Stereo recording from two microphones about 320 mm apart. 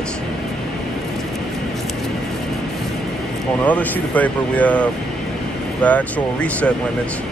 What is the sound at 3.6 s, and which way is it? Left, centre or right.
Speech, centre.